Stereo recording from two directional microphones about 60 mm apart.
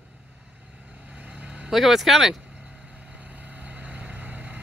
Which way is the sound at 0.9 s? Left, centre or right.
Centre.